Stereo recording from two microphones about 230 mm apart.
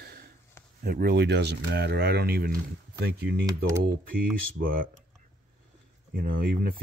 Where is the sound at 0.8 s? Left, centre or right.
Right.